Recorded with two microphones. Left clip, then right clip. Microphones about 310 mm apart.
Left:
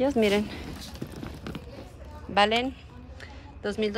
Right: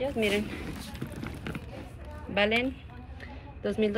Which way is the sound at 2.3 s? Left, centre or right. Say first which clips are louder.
Left 3 dB; centre.